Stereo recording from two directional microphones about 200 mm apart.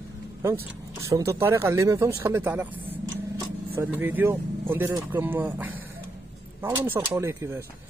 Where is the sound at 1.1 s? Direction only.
15° right (ahead or behind).